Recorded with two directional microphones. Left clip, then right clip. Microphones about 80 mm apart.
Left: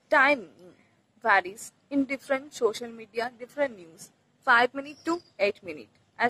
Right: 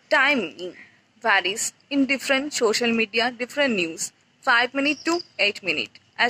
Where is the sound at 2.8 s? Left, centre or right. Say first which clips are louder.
Right 11 dB; right.